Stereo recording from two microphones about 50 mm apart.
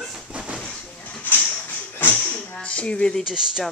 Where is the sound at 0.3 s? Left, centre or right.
Right.